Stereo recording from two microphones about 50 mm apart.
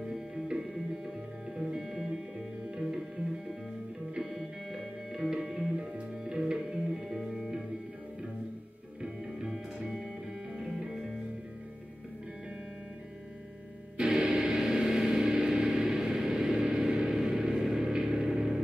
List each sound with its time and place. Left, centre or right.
0.0 s music: centre
1.6 s music: centre
4.1 s music: centre
9.0 s music: centre
14.0 s music: centre
14.4 s a sound: centre